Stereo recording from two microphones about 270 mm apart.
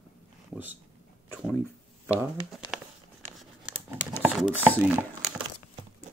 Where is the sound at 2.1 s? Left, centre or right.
Centre.